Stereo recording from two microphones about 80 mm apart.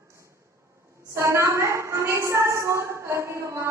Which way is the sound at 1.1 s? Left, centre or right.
Right.